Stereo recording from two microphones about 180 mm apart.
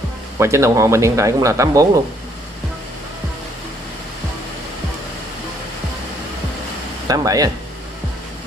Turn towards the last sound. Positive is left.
turn(degrees=-20)  # may be behind; listen again after turning